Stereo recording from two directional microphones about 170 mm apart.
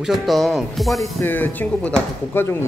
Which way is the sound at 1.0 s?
10° left (ahead or behind).